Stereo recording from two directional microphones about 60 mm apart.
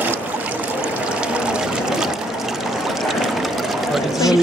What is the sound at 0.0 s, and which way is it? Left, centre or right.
Trickle, right.